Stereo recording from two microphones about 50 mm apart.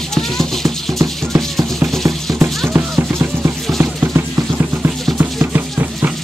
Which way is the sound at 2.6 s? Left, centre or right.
Right.